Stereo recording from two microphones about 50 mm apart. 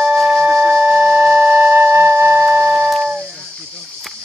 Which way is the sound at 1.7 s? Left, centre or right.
Right.